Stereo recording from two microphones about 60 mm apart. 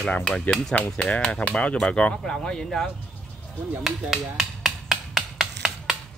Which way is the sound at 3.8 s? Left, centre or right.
Centre.